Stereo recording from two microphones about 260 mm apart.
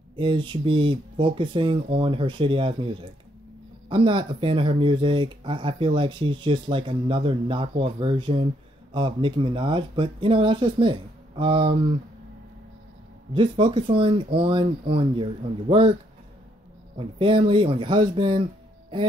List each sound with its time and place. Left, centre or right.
0.1 s speech: centre
13.3 s speech: centre
16.9 s speech: centre